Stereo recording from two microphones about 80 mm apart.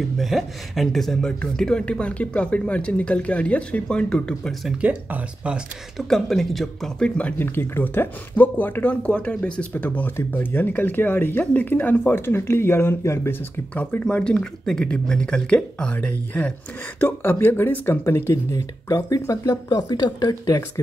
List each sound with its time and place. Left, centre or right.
0.2 s speech: centre
4.8 s speech: centre
5.9 s speech: centre
7.2 s speech: centre; by 13.4 s left
14.0 s speech: centre; by 19.6 s left
19.7 s speech: left